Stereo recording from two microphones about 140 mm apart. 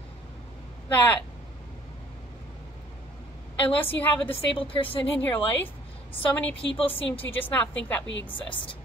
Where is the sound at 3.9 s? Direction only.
15° left (ahead or behind).